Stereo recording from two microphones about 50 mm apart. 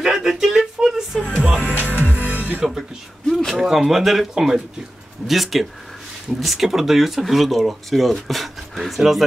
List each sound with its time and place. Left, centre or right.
0.0 s speech: centre
1.3 s music: right
3.3 s a sound: centre
3.5 s speech: centre